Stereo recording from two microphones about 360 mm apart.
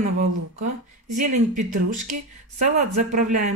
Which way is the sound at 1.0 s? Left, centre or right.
Right.